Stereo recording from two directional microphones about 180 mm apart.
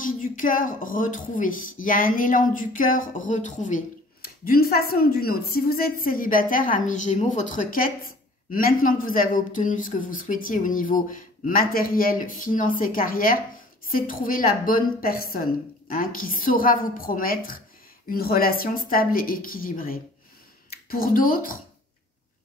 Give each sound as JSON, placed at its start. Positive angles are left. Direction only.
{"t": 0.0, "sound": "a woman's voice", "side_deg": 50}